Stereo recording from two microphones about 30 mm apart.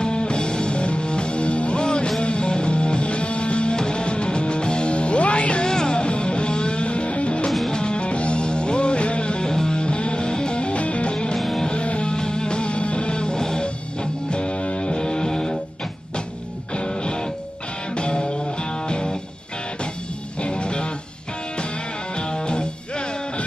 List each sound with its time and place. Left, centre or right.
0.0 s music: left
1.8 s music: left
3.7 s music: left
5.7 s music: left
7.7 s music: left
9.5 s music: left
9.8 s music: left
11.3 s music: centre
11.7 s music: left
12.1 s music: left
15.0 s music: left
16.7 s music: left
20.4 s music: left
22.3 s music: left